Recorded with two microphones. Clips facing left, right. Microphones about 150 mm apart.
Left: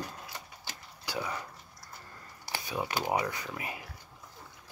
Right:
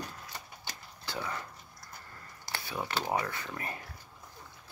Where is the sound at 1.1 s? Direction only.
15° left (ahead or behind).